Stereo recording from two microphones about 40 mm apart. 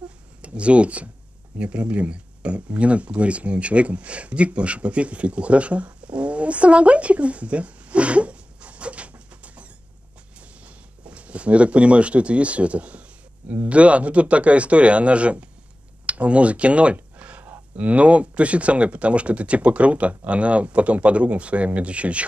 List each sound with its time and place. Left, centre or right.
0.4 s speech: right
16.1 s a sound: right
17.7 s speech: right